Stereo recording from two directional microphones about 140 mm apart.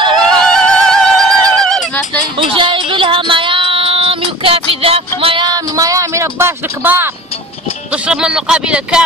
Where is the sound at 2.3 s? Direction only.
35° right (ahead or behind); by 7.1 s 15° right (ahead or behind).